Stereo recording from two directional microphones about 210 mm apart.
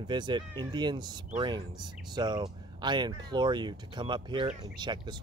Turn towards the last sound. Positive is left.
turn(degrees=-20)  # may be behind; listen again after turning